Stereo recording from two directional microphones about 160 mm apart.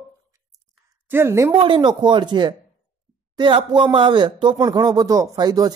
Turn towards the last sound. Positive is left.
turn(degrees=-25)  # may be behind; listen again after turning